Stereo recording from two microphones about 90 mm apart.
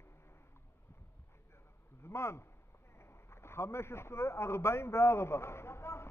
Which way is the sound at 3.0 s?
30° left (ahead or behind).